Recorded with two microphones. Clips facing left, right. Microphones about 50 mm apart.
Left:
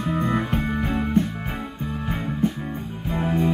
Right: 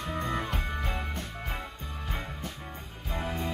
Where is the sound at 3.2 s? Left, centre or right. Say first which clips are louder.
Left 11 dB; centre.